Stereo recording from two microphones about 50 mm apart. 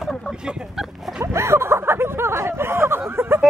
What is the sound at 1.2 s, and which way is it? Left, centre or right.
Speech, right.